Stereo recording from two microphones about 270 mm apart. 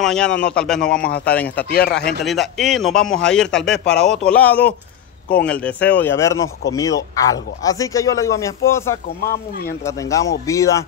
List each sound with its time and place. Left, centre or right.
0.0 s speech: centre
1.7 s speech: left
2.0 s a man's voice: centre